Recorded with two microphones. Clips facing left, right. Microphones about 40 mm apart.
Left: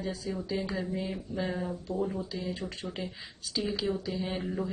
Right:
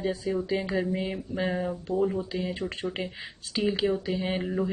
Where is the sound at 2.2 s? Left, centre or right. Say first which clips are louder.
Right 4 dB; right.